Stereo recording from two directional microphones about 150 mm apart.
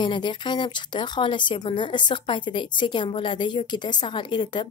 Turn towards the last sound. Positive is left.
turn(degrees=30)  # may be behind; listen again after turning